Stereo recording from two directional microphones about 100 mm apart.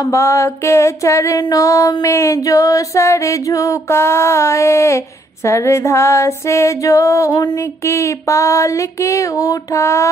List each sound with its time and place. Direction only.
0.1 s female singing: 30° left (ahead or behind)